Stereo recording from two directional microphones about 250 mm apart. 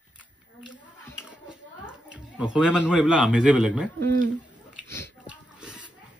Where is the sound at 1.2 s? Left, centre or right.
Centre.